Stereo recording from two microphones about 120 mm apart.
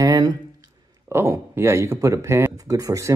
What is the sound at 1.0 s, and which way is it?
Speech, 20° right (ahead or behind).